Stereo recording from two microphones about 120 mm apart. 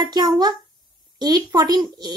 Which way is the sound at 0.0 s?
40° right (ahead or behind).